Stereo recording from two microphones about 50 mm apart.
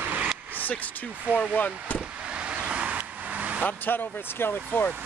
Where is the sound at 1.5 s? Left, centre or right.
Left.